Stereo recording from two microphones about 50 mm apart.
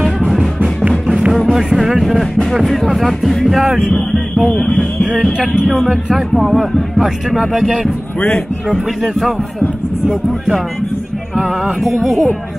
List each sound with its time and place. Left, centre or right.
1.0 s music: centre
2.6 s speech: centre
5.7 s speech: centre
11.8 s speech: centre